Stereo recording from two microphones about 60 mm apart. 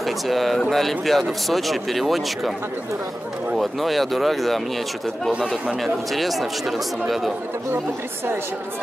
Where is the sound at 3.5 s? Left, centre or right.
Centre.